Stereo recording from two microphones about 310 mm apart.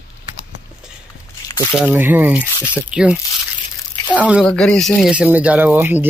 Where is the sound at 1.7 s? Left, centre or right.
Centre.